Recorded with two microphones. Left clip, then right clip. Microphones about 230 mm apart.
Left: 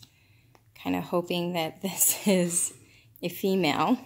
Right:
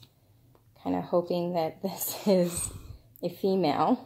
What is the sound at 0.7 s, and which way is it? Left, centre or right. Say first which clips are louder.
Speech: right 1 dB; left.